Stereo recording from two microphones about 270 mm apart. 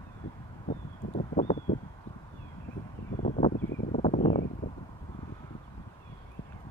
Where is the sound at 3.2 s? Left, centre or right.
Left.